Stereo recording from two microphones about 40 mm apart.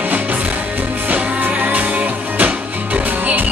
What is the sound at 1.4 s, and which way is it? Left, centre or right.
Music, right.